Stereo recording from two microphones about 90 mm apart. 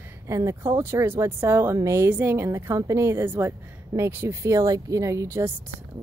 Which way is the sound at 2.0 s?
20° right (ahead or behind).